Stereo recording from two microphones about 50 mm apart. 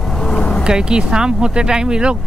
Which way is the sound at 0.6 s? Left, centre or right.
Centre.